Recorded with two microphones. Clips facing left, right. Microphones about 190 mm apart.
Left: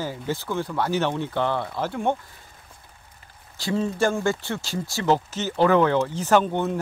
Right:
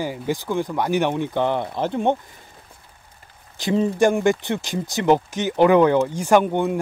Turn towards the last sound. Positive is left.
turn(degrees=-15)  # may be behind; listen again after turning